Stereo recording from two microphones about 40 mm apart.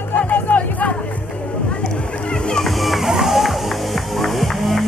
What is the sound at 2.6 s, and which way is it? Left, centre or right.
Music, centre.